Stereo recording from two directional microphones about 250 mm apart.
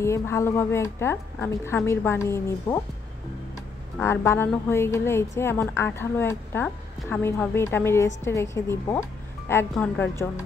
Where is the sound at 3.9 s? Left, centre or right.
Centre.